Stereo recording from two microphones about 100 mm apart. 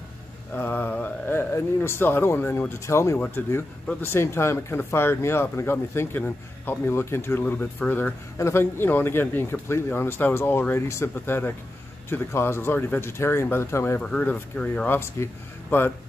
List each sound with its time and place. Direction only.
0.5 s speech: 20° left (ahead or behind)
14.0 s speech: 10° left (ahead or behind)